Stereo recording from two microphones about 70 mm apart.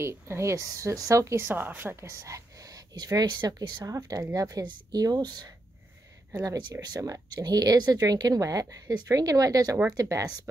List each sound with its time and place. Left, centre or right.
0.0 s a woman's voice: right
1.4 s a woman's voice: right
6.3 s a woman's voice: right